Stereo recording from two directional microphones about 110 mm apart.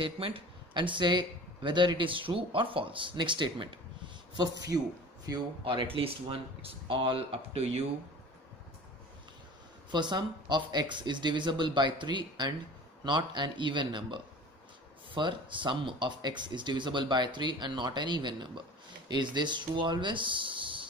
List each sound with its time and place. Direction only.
0.0 s speech: 55° right (ahead or behind)
4.4 s a man's voice: 35° right (ahead or behind)
5.6 s speech: 50° right (ahead or behind)
9.8 s speech: 45° right (ahead or behind)